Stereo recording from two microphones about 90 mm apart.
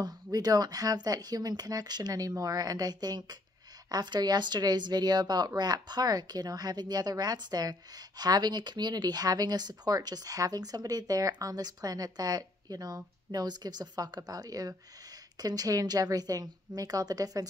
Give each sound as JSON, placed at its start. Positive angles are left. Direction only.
{"t": 0.0, "sound": "speech", "side_deg": -45}